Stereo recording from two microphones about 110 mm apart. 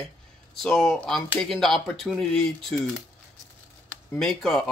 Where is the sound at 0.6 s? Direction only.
5° left (ahead or behind).